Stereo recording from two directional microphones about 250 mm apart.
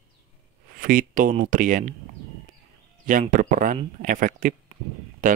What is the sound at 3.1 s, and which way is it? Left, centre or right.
Speech, right.